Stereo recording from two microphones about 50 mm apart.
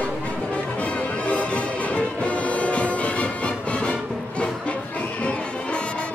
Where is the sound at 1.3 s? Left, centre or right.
Left.